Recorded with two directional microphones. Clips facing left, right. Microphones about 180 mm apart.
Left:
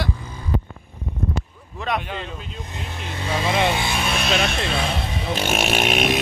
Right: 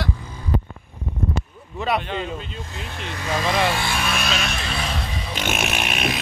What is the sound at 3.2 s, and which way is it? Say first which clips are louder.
Speech: even; 25° left (ahead or behind).